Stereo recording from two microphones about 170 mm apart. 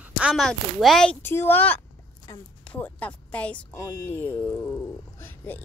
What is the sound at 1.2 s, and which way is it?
Speech, 15° left (ahead or behind).